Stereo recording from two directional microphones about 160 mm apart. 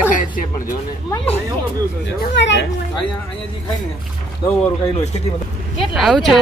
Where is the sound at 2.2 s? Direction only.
90° left.